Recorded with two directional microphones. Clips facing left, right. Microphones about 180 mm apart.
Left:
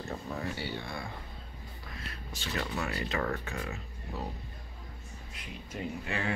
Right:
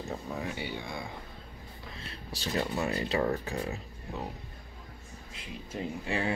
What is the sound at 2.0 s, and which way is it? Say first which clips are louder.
Speech: right 1 dB; 35° right (ahead or behind).